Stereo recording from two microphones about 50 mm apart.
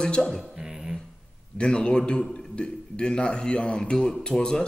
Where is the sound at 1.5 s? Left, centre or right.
Centre.